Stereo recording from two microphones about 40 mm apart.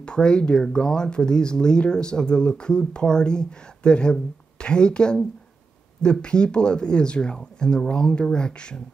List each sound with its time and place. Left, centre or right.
0.0 s speech: left